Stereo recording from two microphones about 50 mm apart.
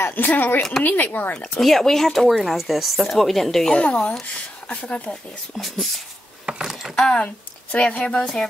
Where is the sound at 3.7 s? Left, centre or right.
Left.